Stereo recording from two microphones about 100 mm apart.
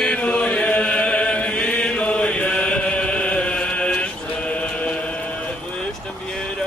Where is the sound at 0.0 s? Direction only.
10° left (ahead or behind).